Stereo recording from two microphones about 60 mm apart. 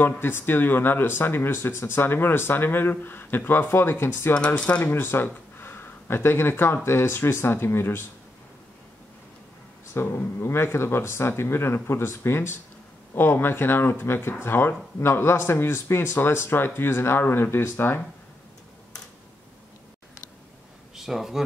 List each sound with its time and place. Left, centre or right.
0.2 s speech: left
4.6 s speech: left
5.0 s speech: left
9.9 s speech: left
20.9 s speech: centre